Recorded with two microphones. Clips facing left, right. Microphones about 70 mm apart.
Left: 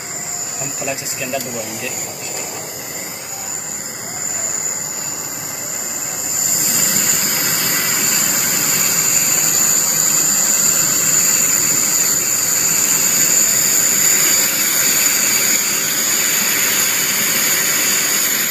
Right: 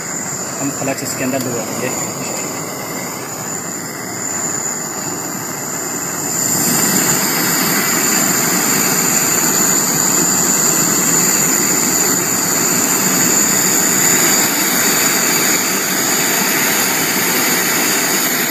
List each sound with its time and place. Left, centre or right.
6.7 s vehicle: right